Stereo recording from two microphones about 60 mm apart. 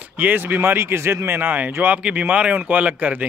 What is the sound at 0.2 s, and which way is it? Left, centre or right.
Speech, right.